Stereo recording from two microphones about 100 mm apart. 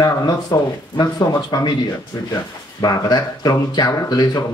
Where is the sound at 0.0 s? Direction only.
40° left (ahead or behind).